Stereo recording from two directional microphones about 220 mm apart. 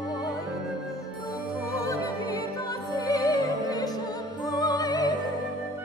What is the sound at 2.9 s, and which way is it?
Music, 15° left (ahead or behind).